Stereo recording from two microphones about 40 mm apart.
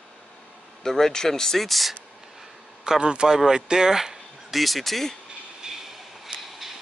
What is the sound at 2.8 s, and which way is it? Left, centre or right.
Speech, right.